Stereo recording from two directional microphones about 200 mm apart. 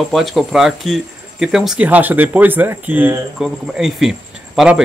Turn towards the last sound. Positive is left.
turn(degrees=-5)  # may be behind; listen again after turning